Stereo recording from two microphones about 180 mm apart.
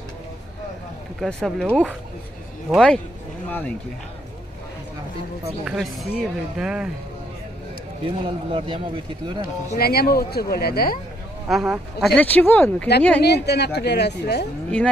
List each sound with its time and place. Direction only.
1.2 s speech: centre (ahead or behind)
5.7 s speech: centre (ahead or behind)
8.0 s speech: 30° right (ahead or behind)
9.4 s speech: 60° left (ahead or behind)
11.4 s speech: centre (ahead or behind)
13.2 s speech: 65° left (ahead or behind)